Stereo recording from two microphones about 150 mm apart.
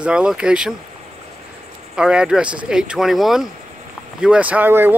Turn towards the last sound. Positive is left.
turn(degrees=-15)  # may be behind; listen again after turning